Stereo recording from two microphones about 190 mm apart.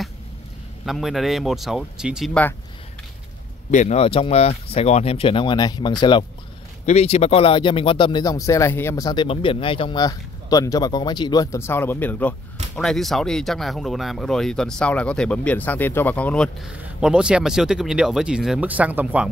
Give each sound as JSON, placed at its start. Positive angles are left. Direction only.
{"t": 0.8, "sound": "speech", "side_deg": 0}
{"t": 3.7, "sound": "speech", "side_deg": 35}